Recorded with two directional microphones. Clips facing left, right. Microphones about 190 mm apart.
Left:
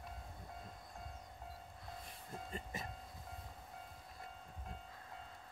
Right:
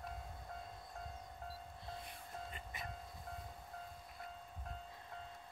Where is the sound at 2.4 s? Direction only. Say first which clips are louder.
Left 4 dB; 40° left (ahead or behind).